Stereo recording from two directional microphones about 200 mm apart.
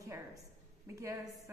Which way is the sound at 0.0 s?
15° right (ahead or behind).